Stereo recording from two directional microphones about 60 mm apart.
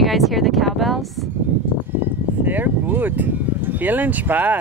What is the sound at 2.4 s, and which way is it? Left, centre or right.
Speech, right.